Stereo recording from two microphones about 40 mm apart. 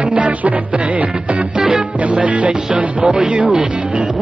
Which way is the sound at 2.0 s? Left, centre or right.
Right.